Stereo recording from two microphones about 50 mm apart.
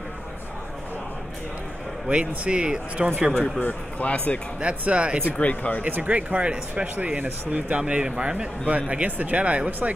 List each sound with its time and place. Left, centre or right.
2.0 s speech: right
3.3 s a man's voice: centre
3.6 s speech: left
4.6 s speech: right
5.2 s speech: left
5.8 s speech: right
7.7 s speech: centre